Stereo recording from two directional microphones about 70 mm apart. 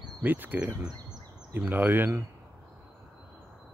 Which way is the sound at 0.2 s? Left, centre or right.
Right.